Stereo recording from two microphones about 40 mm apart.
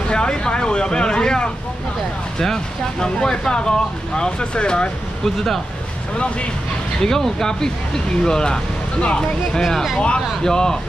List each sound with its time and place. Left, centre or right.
0.1 s speech: left
5.2 s speech: centre
7.0 s speech: centre
9.6 s speech: centre
9.9 s speech: left
10.4 s speech: centre